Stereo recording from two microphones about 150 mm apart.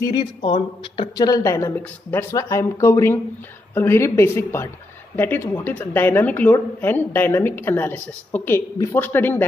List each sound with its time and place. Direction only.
0.0 s speech: 30° left (ahead or behind); by 9.4 s 15° left (ahead or behind)